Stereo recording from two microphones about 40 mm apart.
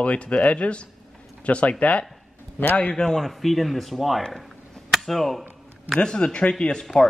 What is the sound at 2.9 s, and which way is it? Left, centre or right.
Speech, centre.